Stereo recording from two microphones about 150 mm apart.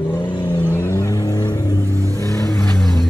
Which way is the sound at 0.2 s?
30° left (ahead or behind).